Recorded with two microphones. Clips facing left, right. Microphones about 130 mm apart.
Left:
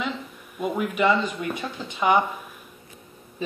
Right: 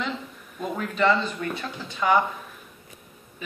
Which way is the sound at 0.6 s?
10° left (ahead or behind).